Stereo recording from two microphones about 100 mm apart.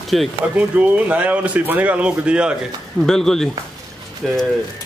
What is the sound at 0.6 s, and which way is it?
Speech, 15° right (ahead or behind).